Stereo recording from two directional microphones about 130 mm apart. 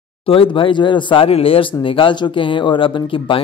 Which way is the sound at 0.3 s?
40° left (ahead or behind).